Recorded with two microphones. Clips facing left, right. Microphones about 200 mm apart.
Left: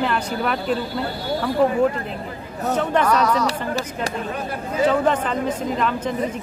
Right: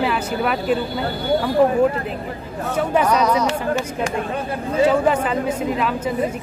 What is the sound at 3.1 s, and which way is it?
Speech, 20° right (ahead or behind).